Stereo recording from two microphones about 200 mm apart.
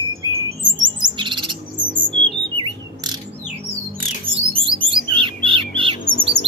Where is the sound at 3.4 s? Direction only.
30° right (ahead or behind).